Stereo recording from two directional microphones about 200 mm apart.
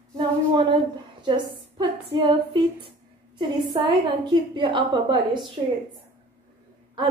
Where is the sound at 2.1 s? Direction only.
25° right (ahead or behind).